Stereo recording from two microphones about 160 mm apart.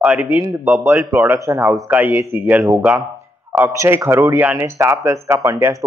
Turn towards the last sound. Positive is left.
turn(degrees=-20)  # may be behind; listen again after turning